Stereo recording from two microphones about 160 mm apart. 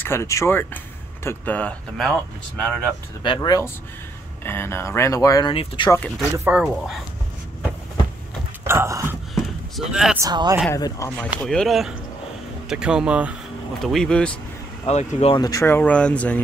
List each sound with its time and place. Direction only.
0.0 s speech: 15° left (ahead or behind)
3.3 s speech: 20° left (ahead or behind)
5.5 s speech: 35° left (ahead or behind)
5.9 s speech: 5° left (ahead or behind)
6.3 s speech: 10° right (ahead or behind)
8.6 s a sound: 15° right (ahead or behind)
9.3 s basketball bounce: centre (ahead or behind)
10.1 s speech: 25° right (ahead or behind)
10.7 s speech: 20° left (ahead or behind)
11.4 s speech: centre (ahead or behind)
14.9 s speech: 40° left (ahead or behind)
15.3 s speech: 20° left (ahead or behind)